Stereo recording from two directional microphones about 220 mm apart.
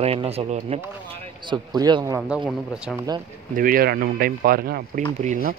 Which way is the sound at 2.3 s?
5° right (ahead or behind).